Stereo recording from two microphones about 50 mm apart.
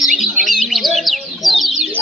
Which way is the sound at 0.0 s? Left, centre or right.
Centre.